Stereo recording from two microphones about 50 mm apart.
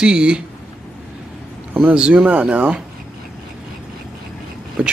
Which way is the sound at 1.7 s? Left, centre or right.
Right.